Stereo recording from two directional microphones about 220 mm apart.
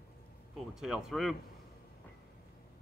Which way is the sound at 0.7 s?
Centre (ahead or behind).